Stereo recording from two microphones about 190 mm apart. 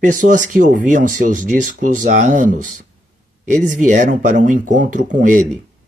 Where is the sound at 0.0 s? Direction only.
40° right (ahead or behind).